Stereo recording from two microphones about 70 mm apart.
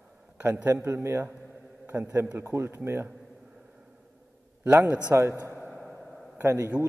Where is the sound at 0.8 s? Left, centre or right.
Right.